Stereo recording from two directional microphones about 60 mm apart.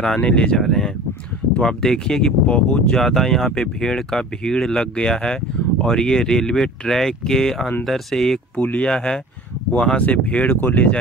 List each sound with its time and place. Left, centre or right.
0.2 s speech: centre
0.6 s speech: centre
3.0 s speech: centre
8.5 s speech: left